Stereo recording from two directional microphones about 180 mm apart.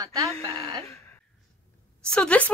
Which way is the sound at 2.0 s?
5° left (ahead or behind).